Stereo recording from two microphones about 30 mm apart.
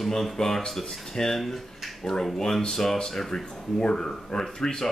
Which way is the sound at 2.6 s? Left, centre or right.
Centre.